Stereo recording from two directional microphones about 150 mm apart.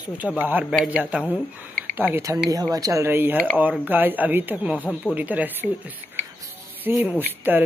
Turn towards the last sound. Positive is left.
turn(degrees=-10)  # may be behind; listen again after turning